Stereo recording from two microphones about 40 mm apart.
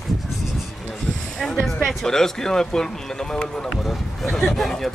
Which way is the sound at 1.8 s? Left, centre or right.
Centre.